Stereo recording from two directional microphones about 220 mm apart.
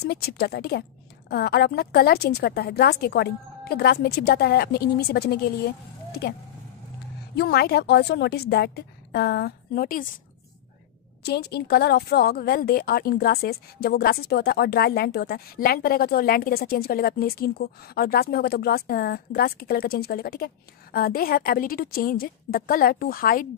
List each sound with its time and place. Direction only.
0.0 s speech: 45° left (ahead or behind)
7.3 s speech: 45° left (ahead or behind)
11.2 s speech: 45° left (ahead or behind)